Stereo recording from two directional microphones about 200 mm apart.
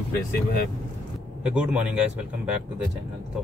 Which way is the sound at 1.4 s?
5° right (ahead or behind).